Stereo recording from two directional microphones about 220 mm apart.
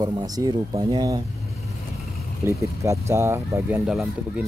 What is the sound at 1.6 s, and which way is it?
Vehicle, centre (ahead or behind).